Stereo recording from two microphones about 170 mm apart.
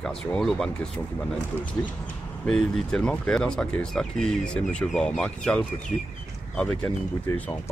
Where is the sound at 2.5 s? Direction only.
5° left (ahead or behind).